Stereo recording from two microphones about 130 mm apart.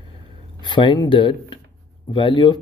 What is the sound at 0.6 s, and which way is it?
Speech, 35° left (ahead or behind).